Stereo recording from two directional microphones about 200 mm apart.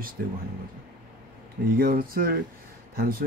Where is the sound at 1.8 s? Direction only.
45° right (ahead or behind).